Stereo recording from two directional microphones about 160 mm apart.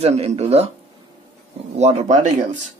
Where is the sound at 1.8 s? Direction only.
45° right (ahead or behind).